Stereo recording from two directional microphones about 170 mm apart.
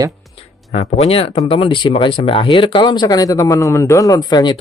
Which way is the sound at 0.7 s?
40° left (ahead or behind).